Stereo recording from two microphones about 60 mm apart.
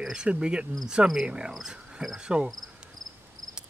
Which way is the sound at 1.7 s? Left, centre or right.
Centre.